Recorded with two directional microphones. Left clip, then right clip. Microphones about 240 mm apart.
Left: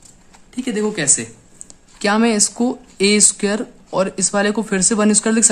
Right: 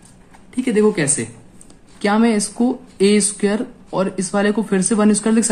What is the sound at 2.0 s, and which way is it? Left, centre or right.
Speech, left.